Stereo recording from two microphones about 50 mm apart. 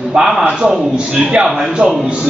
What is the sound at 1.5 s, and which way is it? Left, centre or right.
Speech, centre.